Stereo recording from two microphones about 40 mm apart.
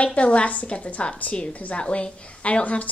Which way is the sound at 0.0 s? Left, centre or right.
Left.